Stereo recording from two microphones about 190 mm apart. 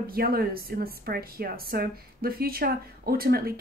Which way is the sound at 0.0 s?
50° right (ahead or behind).